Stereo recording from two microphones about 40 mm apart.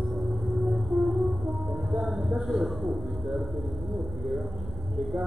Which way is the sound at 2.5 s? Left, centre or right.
Centre.